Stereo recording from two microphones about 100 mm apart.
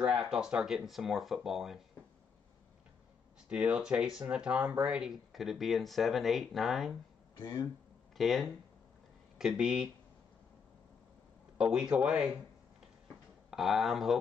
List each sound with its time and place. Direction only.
0.0 s speech: 5° right (ahead or behind)
3.4 s speech: 10° right (ahead or behind)
7.3 s speech: 25° left (ahead or behind)
8.2 s speech: centre (ahead or behind)
11.5 s speech: 5° right (ahead or behind)
13.5 s speech: centre (ahead or behind)